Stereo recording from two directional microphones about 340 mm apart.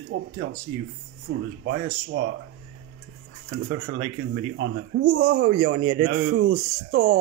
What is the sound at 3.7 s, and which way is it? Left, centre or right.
Speech, right.